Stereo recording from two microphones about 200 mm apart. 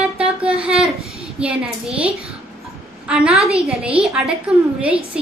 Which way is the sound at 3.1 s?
5° right (ahead or behind).